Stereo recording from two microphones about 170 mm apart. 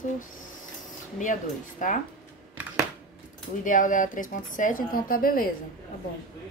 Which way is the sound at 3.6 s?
50° left (ahead or behind).